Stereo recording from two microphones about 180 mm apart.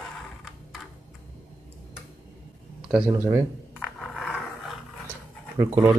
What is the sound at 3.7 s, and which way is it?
Roar, centre (ahead or behind).